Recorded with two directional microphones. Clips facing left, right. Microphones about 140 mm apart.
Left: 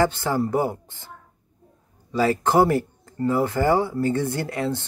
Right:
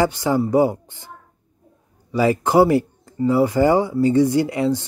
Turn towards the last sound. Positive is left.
turn(degrees=-15)  # may be behind; listen again after turning